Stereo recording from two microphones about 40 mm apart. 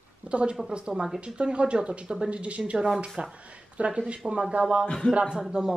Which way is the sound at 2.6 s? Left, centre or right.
Centre.